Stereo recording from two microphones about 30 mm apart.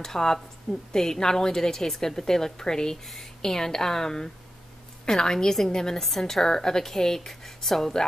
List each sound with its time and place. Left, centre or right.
0.0 s a woman's voice: centre
7.2 s a woman's voice: centre